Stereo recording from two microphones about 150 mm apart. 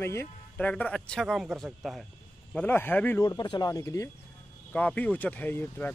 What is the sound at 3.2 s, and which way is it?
Speech, 30° left (ahead or behind).